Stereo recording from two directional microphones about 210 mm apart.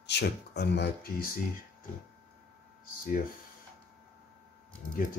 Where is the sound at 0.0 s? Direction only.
55° left (ahead or behind).